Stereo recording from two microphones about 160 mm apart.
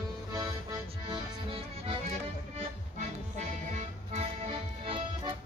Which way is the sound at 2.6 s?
45° right (ahead or behind).